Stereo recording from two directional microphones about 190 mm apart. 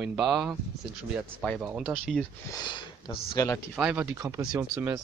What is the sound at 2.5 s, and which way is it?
Speech, 25° left (ahead or behind).